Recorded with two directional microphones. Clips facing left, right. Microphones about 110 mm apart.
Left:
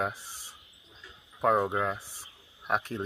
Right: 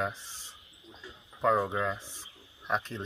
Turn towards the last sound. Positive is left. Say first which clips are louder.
# left 2 dB
turn(degrees=10)  # may be behind; listen again after turning